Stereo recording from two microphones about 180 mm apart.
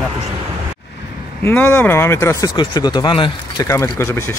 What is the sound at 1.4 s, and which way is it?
Speech, 10° left (ahead or behind).